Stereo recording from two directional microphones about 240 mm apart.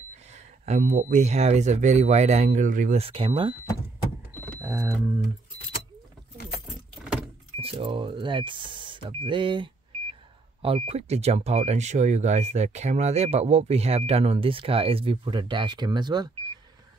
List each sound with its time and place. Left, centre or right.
0.3 s speech: right
4.6 s a sound: centre
7.0 s vehicle: centre
7.6 s speech: right